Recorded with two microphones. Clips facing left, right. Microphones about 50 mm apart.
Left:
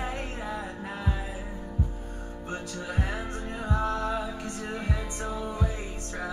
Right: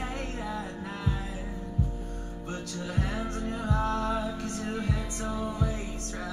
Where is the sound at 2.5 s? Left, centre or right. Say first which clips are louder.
Even; centre.